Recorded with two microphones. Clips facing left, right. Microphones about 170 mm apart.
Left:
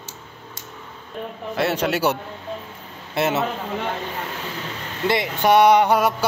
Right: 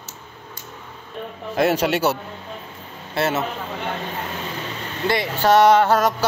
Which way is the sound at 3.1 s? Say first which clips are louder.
Even; 20° left (ahead or behind).